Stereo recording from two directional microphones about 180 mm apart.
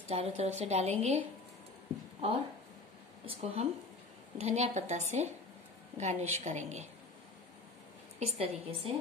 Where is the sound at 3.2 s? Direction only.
35° right (ahead or behind).